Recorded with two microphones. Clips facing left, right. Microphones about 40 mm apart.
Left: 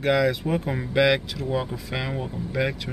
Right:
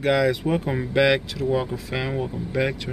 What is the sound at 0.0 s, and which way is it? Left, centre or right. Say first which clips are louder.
Speech: right 1 dB; centre.